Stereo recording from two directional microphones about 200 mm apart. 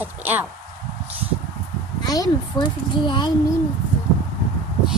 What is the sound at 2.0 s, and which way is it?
A child's voice, 20° left (ahead or behind).